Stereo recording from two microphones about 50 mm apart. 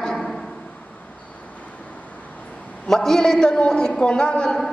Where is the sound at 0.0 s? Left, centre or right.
Centre.